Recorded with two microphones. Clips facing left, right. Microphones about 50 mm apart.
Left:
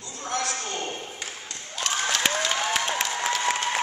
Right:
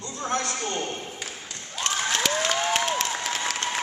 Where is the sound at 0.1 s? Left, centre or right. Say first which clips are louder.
Right 1 dB; right.